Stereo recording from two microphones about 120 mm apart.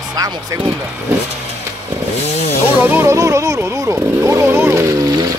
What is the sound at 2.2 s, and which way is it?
Chainsaw, 65° left (ahead or behind).